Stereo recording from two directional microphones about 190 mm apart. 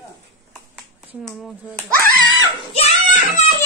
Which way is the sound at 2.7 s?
35° left (ahead or behind).